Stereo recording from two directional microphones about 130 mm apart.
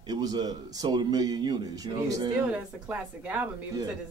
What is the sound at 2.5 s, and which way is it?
Speech, 10° right (ahead or behind).